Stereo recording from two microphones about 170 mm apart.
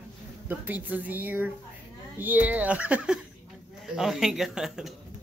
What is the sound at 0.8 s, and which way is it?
Speech, 10° right (ahead or behind).